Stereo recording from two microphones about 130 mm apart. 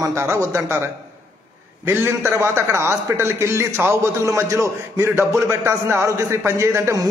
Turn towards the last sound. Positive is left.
turn(degrees=-20)  # may be behind; listen again after turning